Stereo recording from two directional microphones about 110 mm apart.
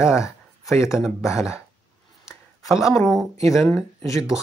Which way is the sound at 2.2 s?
30° left (ahead or behind).